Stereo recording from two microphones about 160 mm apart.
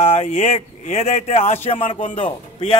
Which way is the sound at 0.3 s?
50° left (ahead or behind).